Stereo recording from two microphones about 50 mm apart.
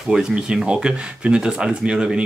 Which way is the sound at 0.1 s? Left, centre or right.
Centre.